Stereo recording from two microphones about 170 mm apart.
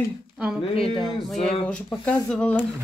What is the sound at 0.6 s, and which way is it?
Speech, 35° left (ahead or behind).